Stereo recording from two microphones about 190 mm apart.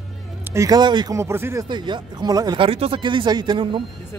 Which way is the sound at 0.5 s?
20° right (ahead or behind).